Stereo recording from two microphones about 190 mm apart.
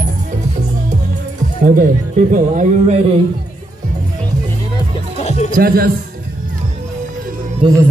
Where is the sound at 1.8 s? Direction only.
45° right (ahead or behind).